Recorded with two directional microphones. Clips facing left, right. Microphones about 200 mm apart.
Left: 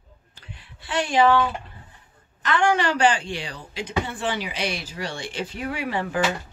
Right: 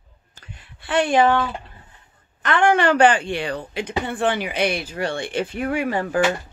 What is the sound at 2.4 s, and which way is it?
A woman's voice, 55° right (ahead or behind).